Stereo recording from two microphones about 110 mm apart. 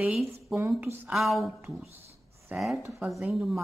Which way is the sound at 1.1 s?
Centre (ahead or behind).